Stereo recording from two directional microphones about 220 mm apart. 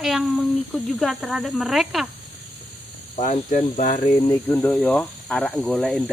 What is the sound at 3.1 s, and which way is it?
Speech, 35° left (ahead or behind).